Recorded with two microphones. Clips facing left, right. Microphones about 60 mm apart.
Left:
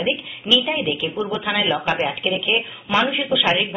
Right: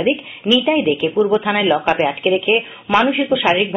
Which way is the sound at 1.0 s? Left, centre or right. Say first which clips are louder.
Right 8 dB; right.